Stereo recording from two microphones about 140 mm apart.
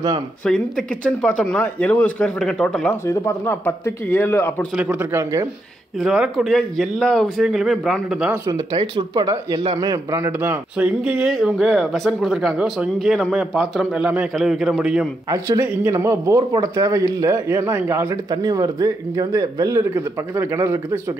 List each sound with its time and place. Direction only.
0.5 s speech: 5° left (ahead or behind)
3.1 s speech: 15° left (ahead or behind)
4.7 s speech: 5° right (ahead or behind)
5.1 s speech: 20° right (ahead or behind)
5.9 s speech: 5° right (ahead or behind)
8.5 s speech: 35° right (ahead or behind); by 15.0 s 5° right (ahead or behind)
15.2 s speech: 25° right (ahead or behind)